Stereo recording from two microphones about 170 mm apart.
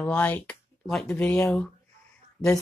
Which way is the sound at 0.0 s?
10° left (ahead or behind).